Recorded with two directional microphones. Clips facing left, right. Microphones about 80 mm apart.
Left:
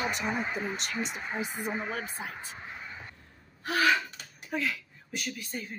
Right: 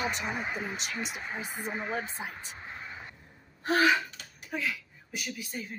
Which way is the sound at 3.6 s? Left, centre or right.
Right.